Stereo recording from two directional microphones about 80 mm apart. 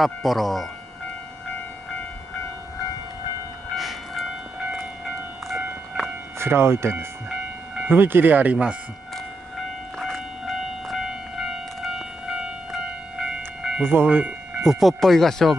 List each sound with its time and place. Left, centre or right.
0.0 s speech: centre
3.7 s train: centre
6.3 s speech: right; by 8.7 s centre
9.9 s train: centre
13.8 s speech: right
14.7 s speech: centre